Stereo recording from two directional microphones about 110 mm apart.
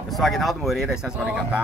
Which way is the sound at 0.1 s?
Centre (ahead or behind).